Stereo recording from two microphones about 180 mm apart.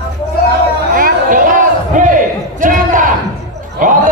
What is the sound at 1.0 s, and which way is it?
Battle cry, 50° right (ahead or behind).